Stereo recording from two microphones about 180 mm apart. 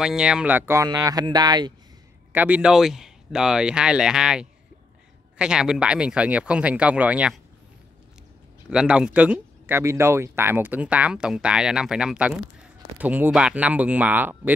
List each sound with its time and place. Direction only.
0.0 s speech: 5° right (ahead or behind); by 1.7 s 20° right (ahead or behind)
2.3 s speech: 10° right (ahead or behind)
8.6 s speech: 5° right (ahead or behind)